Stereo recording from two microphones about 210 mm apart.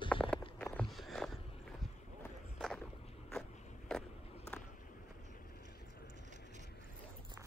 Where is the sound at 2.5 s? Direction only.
Centre (ahead or behind).